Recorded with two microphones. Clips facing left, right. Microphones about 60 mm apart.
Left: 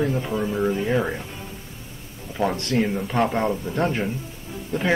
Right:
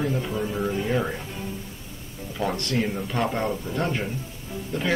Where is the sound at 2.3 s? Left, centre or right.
Left.